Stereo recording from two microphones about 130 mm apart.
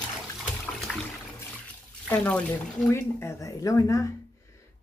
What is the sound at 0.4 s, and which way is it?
Water, centre (ahead or behind).